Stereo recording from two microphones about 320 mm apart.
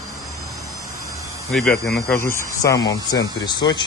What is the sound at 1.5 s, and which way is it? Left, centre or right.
Speech, centre.